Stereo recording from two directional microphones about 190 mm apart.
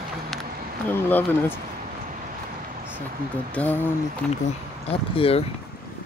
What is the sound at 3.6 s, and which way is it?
Speech, 10° left (ahead or behind).